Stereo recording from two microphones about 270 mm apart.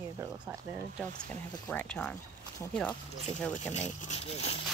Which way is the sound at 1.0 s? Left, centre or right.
Centre.